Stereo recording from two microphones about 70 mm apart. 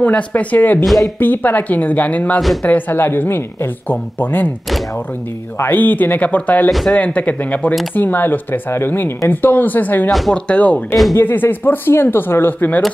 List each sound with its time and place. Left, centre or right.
0.0 s speech: left
5.6 s speech: left
6.7 s speech: centre
7.0 s speech: left
11.1 s speech: left